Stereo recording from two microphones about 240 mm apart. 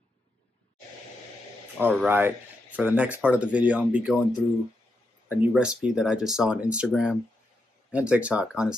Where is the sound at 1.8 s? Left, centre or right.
Centre.